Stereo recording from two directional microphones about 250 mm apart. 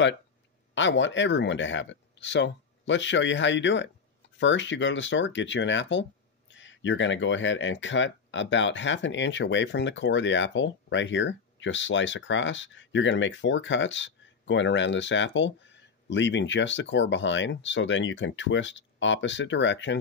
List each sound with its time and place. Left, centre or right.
0.7 s speech: left